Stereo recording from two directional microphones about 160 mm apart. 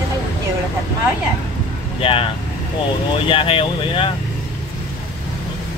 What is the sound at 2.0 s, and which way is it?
Speech, 35° left (ahead or behind).